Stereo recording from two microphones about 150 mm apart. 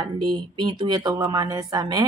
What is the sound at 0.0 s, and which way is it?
Speech, 30° right (ahead or behind).